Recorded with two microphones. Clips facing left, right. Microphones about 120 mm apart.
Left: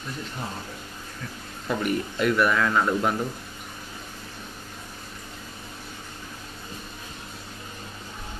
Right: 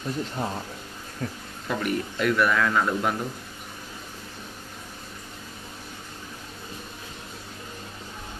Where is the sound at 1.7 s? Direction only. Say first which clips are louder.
Left 1 dB; 5° left (ahead or behind).